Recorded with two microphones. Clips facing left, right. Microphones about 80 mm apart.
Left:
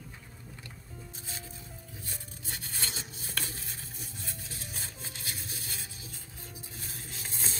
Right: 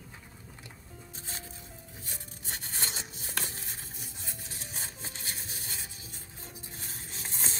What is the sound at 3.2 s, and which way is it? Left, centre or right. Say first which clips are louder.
Music: right 1 dB; right.